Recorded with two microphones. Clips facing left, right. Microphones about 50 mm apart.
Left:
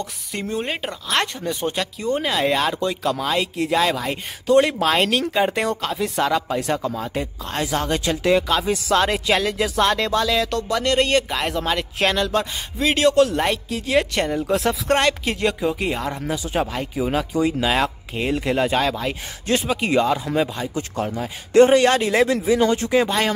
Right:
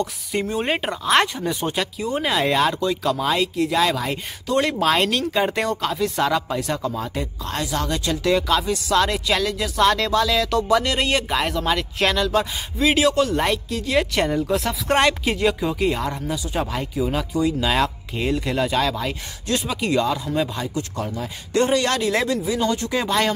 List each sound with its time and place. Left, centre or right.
0.4 s speech: centre
1.5 s speech: centre
3.5 s speech: centre
7.2 s speech: centre
7.6 s speech: left
9.8 s speech: centre
14.1 s speech: centre
15.7 s speech: centre
16.5 s speech: left
17.6 s speech: centre
19.4 s speech: left
21.5 s speech: left
22.8 s speech: centre